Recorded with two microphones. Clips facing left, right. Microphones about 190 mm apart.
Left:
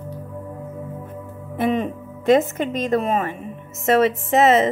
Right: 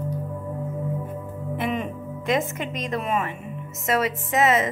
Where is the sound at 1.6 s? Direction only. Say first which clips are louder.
Left 7 dB; 35° left (ahead or behind).